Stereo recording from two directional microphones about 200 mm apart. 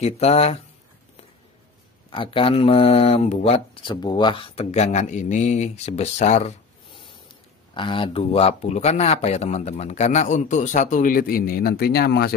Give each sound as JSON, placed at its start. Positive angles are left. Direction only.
{"t": 0.0, "sound": "speech", "side_deg": 30}
{"t": 2.0, "sound": "speech", "side_deg": 25}
{"t": 7.7, "sound": "speech", "side_deg": 25}